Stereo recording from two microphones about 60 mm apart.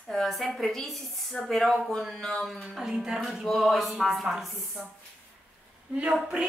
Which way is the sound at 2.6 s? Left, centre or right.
Centre.